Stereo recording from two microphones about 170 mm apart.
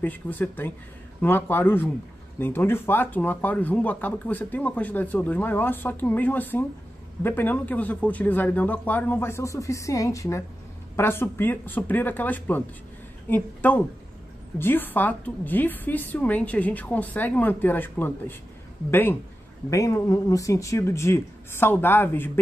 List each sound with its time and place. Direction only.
0.0 s speech: 10° left (ahead or behind)